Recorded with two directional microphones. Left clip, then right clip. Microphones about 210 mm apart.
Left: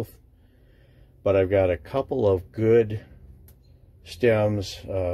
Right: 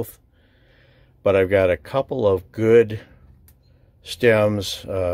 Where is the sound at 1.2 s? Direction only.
30° right (ahead or behind).